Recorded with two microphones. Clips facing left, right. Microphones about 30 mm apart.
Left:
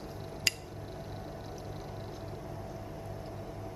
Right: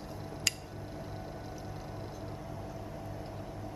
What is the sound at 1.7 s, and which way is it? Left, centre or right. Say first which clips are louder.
Music: even; left.